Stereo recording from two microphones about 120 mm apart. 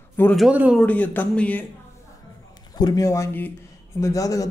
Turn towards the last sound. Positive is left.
turn(degrees=30)  # may be behind; listen again after turning